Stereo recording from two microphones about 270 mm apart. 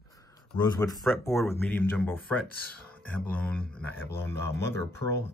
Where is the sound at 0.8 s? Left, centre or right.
Centre.